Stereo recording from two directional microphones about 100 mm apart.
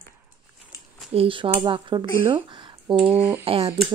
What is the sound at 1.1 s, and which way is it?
Speech, 65° right (ahead or behind).